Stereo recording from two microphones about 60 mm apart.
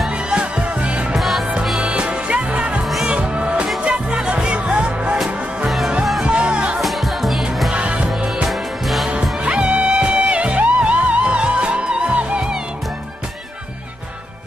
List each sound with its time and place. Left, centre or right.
0.3 s music: centre
1.1 s music: centre
1.8 s music: centre
2.8 s music: centre
3.1 s music: centre
6.2 s music: centre
6.8 s music: centre
7.7 s music: right
8.5 s music: centre
9.4 s music: right